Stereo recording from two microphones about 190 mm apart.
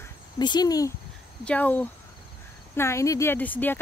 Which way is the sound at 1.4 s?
10° left (ahead or behind).